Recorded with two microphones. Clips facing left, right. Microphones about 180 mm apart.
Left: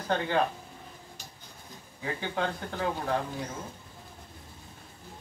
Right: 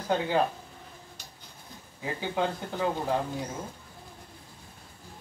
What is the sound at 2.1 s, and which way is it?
Speech, 10° right (ahead or behind).